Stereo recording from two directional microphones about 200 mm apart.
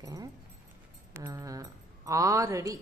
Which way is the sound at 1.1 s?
15° right (ahead or behind).